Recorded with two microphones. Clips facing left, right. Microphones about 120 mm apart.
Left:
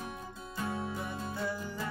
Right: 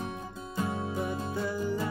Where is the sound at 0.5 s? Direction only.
20° right (ahead or behind).